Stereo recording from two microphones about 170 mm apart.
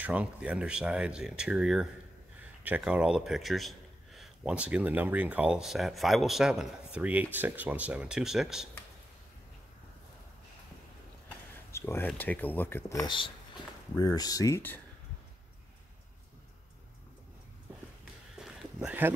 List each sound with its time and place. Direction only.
0.0 s speech: 10° right (ahead or behind)
11.7 s speech: 15° left (ahead or behind)
13.0 s speech: 30° left (ahead or behind)
18.4 s a sound: 5° right (ahead or behind)